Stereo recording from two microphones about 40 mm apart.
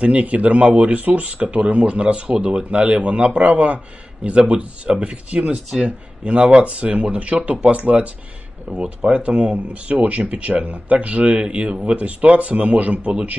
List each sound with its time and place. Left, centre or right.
0.0 s a man's voice: right